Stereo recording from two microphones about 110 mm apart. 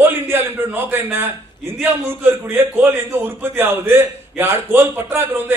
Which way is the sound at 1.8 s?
20° right (ahead or behind).